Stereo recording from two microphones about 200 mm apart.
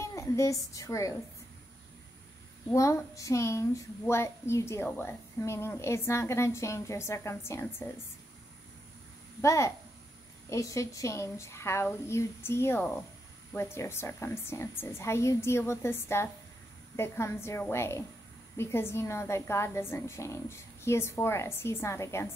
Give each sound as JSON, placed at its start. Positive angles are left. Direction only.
{"t": 0.0, "sound": "a woman's voice", "side_deg": 15}
{"t": 2.7, "sound": "speech", "side_deg": 15}
{"t": 9.4, "sound": "speech", "side_deg": 15}